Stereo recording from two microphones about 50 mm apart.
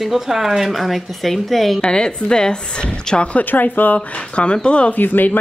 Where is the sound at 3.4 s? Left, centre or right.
Left.